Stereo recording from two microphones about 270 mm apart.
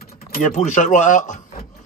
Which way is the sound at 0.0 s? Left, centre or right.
Left.